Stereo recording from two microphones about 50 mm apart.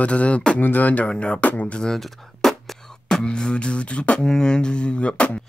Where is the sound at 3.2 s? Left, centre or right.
Centre.